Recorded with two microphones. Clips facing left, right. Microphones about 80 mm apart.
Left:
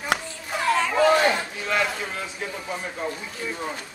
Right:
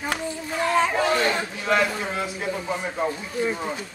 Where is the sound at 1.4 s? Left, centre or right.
Centre.